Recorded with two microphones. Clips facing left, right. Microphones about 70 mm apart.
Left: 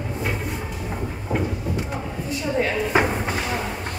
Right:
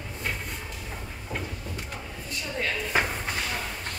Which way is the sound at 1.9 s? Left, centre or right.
Left.